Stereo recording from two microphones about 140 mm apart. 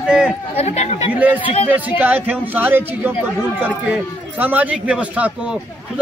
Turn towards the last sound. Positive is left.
turn(degrees=-10)  # may be behind; listen again after turning